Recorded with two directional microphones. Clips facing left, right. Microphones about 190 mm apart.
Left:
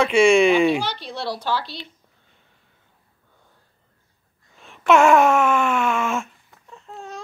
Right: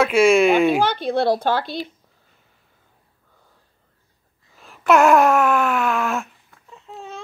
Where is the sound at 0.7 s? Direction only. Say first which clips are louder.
Right 8 dB; 50° right (ahead or behind).